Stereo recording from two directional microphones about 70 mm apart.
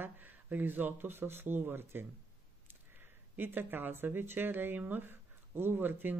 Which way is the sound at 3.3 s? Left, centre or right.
Right.